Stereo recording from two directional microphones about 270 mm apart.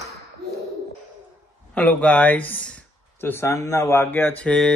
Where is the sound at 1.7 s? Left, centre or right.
Centre.